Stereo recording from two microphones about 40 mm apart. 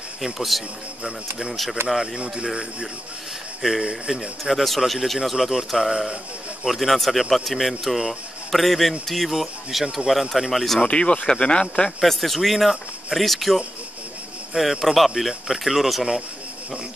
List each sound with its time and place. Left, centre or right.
0.2 s speech: centre
2.1 s speech: right
3.6 s speech: centre
4.1 s speech: centre
10.9 s speech: left
12.0 s speech: centre